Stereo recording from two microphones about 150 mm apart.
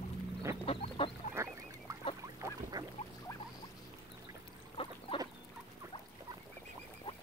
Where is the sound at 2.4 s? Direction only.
25° right (ahead or behind).